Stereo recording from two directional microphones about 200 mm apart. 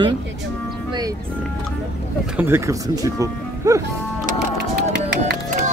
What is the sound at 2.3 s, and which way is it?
Speech, 10° right (ahead or behind).